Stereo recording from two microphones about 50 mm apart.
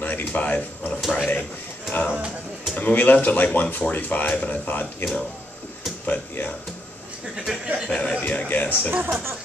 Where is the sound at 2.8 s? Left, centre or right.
Left.